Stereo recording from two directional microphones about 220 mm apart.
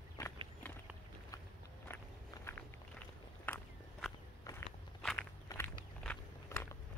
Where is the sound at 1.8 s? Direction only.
10° left (ahead or behind).